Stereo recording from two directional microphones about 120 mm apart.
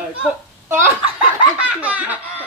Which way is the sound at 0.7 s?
20° right (ahead or behind).